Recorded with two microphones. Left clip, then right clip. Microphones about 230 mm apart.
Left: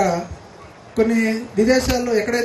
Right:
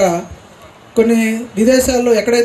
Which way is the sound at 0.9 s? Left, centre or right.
Right.